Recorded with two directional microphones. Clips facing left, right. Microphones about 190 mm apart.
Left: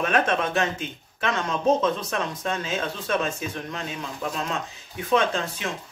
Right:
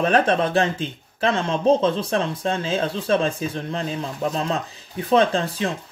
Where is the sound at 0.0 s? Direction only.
35° right (ahead or behind).